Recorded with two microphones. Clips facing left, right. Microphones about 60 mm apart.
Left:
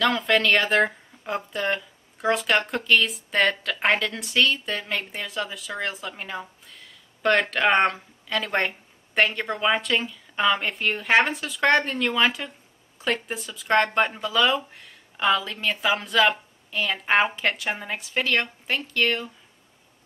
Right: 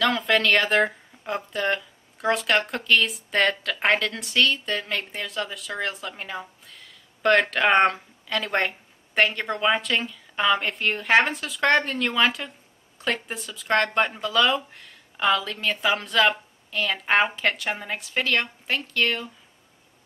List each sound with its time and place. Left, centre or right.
0.0 s speech: centre